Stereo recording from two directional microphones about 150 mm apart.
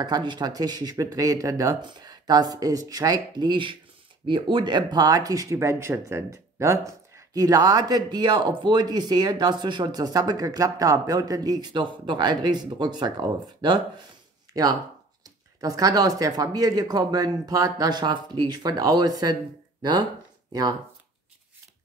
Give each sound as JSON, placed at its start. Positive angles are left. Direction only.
{"t": 0.0, "sound": "speech", "side_deg": -30}